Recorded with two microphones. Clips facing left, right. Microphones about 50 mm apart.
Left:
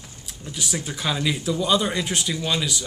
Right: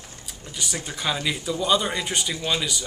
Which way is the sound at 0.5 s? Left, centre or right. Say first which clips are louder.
Left 2 dB; centre.